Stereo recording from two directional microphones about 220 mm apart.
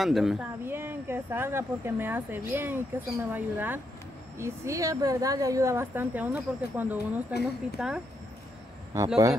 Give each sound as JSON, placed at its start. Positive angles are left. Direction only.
{"t": 0.0, "sound": "speech", "side_deg": 0}
{"t": 8.9, "sound": "speech", "side_deg": -15}